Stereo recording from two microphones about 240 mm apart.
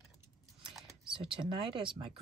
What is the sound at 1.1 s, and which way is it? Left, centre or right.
Speech, centre.